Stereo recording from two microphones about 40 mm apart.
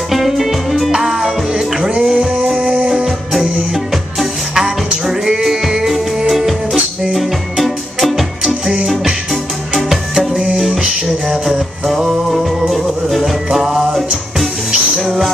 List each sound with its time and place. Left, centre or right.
0.1 s music: centre
1.0 s music: right
1.8 s music: right
3.7 s music: centre
11.9 s music: centre